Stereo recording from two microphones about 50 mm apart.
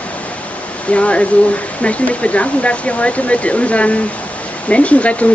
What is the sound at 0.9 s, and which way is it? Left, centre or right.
Speech, left.